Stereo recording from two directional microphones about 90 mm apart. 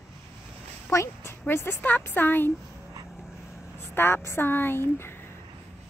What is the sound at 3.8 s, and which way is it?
Speech, 25° left (ahead or behind).